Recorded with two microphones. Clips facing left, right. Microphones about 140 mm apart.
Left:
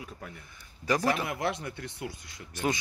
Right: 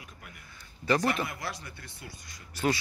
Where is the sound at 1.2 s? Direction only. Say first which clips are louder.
Left 7 dB; 90° left.